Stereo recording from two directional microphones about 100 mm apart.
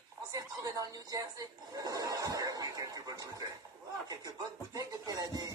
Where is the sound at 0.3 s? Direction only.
35° right (ahead or behind).